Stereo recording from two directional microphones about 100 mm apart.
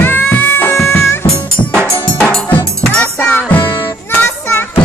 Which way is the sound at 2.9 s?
15° left (ahead or behind).